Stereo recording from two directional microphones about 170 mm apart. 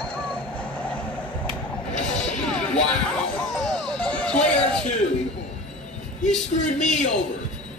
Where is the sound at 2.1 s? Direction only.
45° left (ahead or behind).